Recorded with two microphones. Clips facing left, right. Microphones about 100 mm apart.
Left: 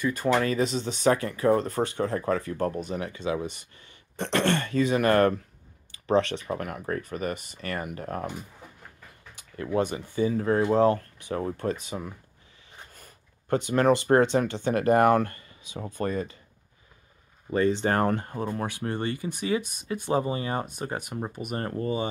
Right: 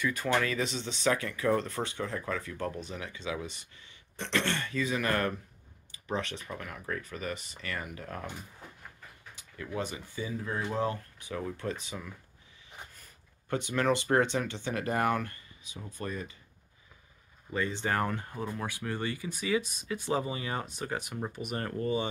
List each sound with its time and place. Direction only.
0.0 s speech: 35° left (ahead or behind)
5.9 s a sound: 75° left (ahead or behind)
6.4 s speech: 50° left (ahead or behind)
9.3 s speech: 60° left (ahead or behind)
10.8 s speech: 65° left (ahead or behind)
11.3 s speech: 45° left (ahead or behind)
17.5 s speech: 50° left (ahead or behind)
19.9 s speech: 45° left (ahead or behind)
21.5 s speech: 35° left (ahead or behind)